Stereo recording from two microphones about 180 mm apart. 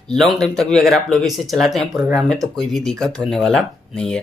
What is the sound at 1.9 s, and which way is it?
Speech, 10° right (ahead or behind).